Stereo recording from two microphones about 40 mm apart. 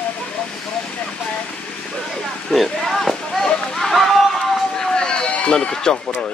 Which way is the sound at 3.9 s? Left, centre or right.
Centre.